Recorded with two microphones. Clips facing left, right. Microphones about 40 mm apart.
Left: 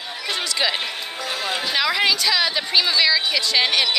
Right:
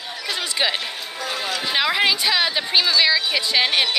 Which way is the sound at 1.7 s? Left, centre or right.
Centre.